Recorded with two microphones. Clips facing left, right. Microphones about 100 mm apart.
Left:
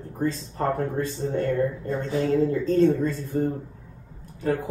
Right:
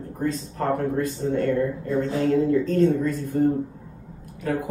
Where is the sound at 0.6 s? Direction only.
30° left (ahead or behind).